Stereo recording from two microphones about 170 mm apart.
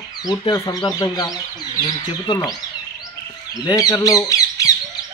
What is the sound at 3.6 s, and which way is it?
Speech, 20° left (ahead or behind).